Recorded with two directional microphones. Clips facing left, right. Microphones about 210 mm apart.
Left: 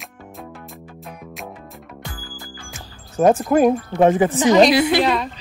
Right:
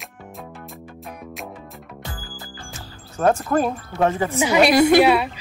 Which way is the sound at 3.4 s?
15° left (ahead or behind).